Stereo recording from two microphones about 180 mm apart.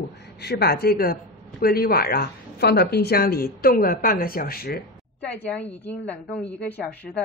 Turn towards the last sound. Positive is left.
turn(degrees=10)  # may be behind; listen again after turning